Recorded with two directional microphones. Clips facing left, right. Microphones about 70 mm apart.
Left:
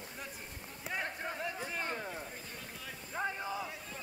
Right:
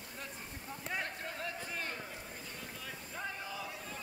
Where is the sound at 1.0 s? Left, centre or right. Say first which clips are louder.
Left 2 dB; centre.